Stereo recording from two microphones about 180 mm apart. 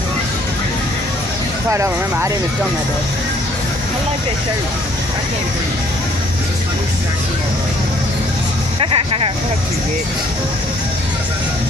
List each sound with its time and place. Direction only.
1.7 s speech: 15° right (ahead or behind)
8.7 s speech: 30° right (ahead or behind)